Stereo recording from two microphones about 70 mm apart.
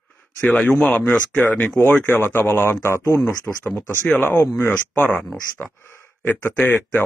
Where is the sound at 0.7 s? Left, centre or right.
Left.